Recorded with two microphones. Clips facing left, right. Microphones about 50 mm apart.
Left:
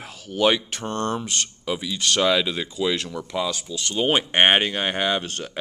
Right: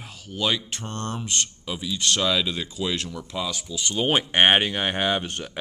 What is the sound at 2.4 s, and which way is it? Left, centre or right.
Speech, centre.